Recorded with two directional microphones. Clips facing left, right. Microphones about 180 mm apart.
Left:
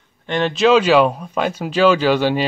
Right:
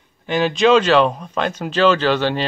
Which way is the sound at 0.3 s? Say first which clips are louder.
Even; centre (ahead or behind).